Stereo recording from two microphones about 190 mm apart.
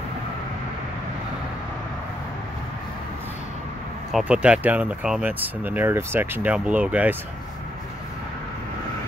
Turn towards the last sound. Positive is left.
turn(degrees=-10)  # may be behind; listen again after turning